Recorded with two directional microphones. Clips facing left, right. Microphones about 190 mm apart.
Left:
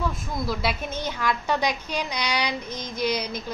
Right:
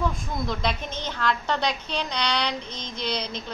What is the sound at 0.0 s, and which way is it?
A woman's voice, 5° left (ahead or behind).